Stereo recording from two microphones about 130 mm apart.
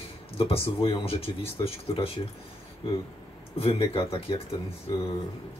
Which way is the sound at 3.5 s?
45° left (ahead or behind).